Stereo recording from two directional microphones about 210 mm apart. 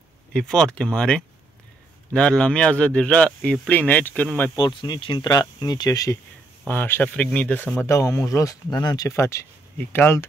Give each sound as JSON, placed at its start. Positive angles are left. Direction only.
{"t": 0.3, "sound": "speech", "side_deg": 5}
{"t": 4.6, "sound": "speech", "side_deg": 20}